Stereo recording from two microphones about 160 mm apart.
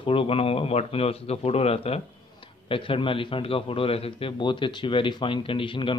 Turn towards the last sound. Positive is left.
turn(degrees=30)  # may be behind; listen again after turning